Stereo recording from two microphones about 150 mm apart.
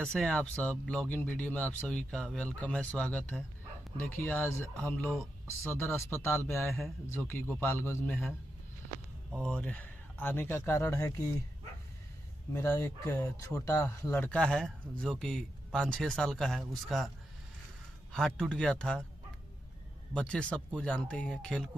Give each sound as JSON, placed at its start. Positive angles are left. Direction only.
{"t": 0.0, "sound": "speech", "side_deg": 5}
{"t": 9.4, "sound": "speech", "side_deg": 5}
{"t": 12.5, "sound": "speech", "side_deg": 15}
{"t": 18.1, "sound": "speech", "side_deg": 5}
{"t": 20.2, "sound": "speech", "side_deg": 5}